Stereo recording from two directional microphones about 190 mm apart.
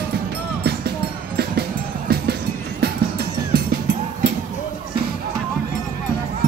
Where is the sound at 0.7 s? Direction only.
55° right (ahead or behind).